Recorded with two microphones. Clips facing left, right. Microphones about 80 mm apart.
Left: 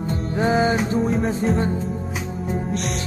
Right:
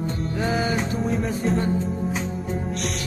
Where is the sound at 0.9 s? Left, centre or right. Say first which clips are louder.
Left 4 dB; centre.